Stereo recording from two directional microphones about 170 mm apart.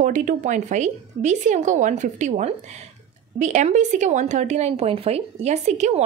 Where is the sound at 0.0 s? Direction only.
50° right (ahead or behind).